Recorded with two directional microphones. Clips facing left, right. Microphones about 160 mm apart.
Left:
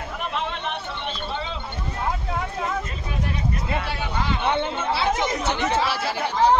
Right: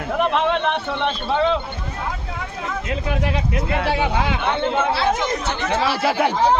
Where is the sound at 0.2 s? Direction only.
70° right (ahead or behind).